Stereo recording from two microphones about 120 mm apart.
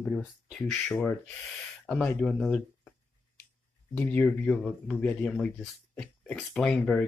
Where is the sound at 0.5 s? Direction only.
5° left (ahead or behind).